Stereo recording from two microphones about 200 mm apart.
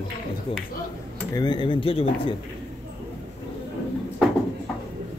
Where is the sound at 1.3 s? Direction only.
20° left (ahead or behind).